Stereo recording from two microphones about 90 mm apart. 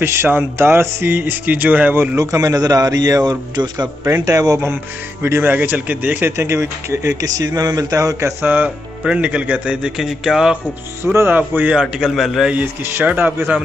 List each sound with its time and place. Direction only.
0.0 s speech: 25° right (ahead or behind)
2.1 s a man's voice: 40° right (ahead or behind)
5.2 s speech: 25° right (ahead or behind)
8.4 s speech: 20° right (ahead or behind)
8.6 s speech: 10° right (ahead or behind)
11.1 s speech: 25° right (ahead or behind)
11.7 s a man's voice: 5° right (ahead or behind)
12.5 s speech: 20° right (ahead or behind)